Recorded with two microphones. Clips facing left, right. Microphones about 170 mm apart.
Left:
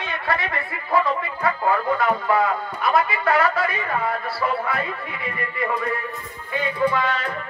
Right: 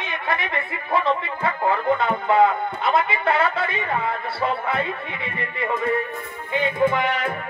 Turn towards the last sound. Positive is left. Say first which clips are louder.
# right 1 dB
turn(degrees=-20)  # may be behind; listen again after turning